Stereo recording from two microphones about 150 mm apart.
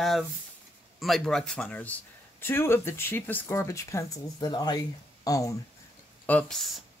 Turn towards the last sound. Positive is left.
turn(degrees=0)  # may be behind; listen again after turning